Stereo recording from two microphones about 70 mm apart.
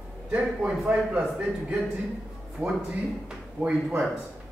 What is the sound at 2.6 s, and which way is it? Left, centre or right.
Speech, centre.